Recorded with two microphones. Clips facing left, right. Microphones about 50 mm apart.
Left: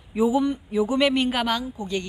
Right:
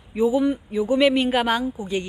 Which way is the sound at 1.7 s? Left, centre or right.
Centre.